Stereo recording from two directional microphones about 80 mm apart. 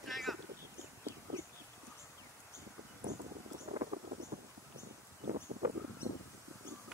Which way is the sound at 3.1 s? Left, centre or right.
Right.